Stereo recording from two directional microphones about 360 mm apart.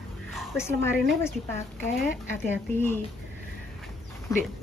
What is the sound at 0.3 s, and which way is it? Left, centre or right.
A woman's voice, centre.